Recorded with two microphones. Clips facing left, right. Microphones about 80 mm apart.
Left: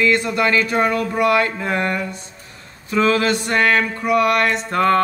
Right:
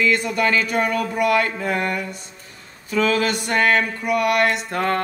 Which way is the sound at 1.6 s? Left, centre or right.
Left.